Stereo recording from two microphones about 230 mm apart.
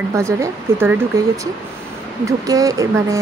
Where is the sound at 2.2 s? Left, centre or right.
Centre.